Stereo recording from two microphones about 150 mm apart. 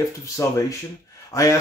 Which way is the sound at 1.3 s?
20° left (ahead or behind).